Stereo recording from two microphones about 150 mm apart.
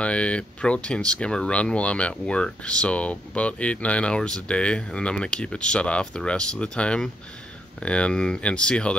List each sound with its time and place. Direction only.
0.0 s speech: 5° left (ahead or behind)